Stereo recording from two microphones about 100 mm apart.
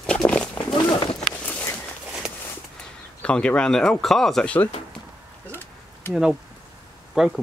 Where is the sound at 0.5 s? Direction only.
50° left (ahead or behind).